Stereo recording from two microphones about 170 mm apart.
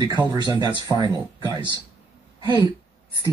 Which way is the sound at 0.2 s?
20° right (ahead or behind).